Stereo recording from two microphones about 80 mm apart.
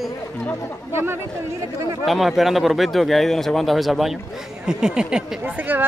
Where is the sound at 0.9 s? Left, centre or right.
Right.